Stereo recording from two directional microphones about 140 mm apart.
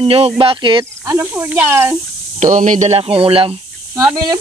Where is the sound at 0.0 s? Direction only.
45° right (ahead or behind).